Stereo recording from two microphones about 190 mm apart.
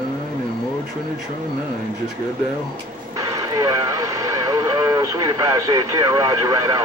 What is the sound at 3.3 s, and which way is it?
Speech, 20° right (ahead or behind).